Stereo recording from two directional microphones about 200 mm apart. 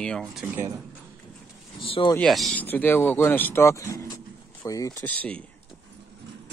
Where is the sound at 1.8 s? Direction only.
25° left (ahead or behind).